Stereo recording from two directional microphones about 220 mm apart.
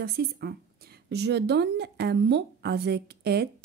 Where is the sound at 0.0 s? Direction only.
45° right (ahead or behind).